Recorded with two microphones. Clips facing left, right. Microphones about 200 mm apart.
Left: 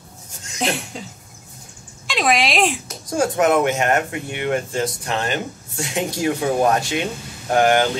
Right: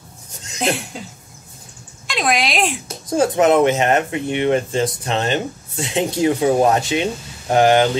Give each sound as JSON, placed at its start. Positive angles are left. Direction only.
{"t": 0.6, "sound": "cough", "side_deg": 0}
{"t": 2.0, "sound": "speech", "side_deg": 0}
{"t": 3.1, "sound": "speech", "side_deg": -20}